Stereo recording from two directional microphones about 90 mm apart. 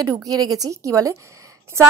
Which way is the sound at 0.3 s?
45° right (ahead or behind).